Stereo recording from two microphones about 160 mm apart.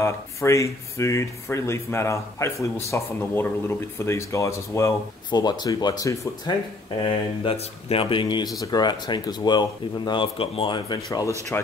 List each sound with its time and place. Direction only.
0.0 s speech: 20° left (ahead or behind)
7.0 s speech: 35° left (ahead or behind)